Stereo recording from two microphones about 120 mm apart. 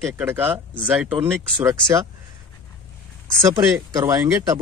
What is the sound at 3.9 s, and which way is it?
Speech, 30° right (ahead or behind).